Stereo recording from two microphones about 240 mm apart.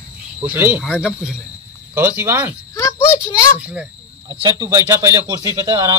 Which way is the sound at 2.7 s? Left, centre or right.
Centre.